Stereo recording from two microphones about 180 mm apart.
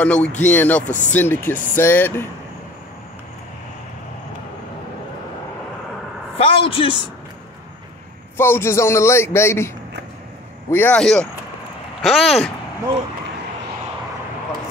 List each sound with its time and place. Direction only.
0.0 s speech: 5° left (ahead or behind)
6.3 s a man's voice: 30° left (ahead or behind)
8.4 s speech: 15° left (ahead or behind)
10.7 s speech: 10° left (ahead or behind)